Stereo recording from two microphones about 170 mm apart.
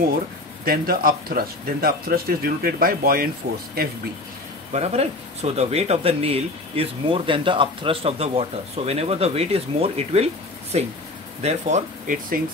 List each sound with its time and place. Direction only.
0.7 s speech: 60° right (ahead or behind)
4.7 s speech: 40° right (ahead or behind)